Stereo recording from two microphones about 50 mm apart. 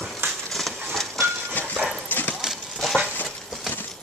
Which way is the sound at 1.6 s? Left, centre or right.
Left.